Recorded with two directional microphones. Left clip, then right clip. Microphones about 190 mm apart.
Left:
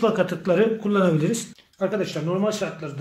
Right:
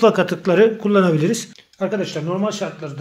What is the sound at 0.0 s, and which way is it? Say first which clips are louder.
Speech: right 6 dB; 40° right (ahead or behind).